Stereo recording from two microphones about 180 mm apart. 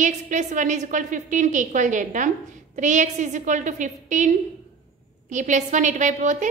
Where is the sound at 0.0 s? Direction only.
45° right (ahead or behind).